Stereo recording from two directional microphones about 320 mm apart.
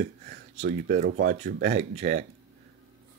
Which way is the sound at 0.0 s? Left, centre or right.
Right.